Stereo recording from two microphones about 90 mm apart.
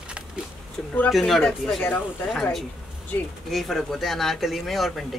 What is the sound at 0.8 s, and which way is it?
A woman's voice, 5° left (ahead or behind).